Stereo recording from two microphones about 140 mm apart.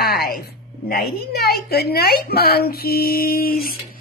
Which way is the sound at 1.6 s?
90° left.